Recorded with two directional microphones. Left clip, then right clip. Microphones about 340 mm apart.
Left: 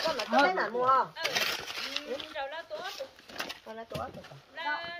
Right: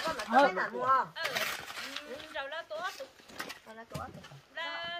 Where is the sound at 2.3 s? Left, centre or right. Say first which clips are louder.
Left 1 dB; centre.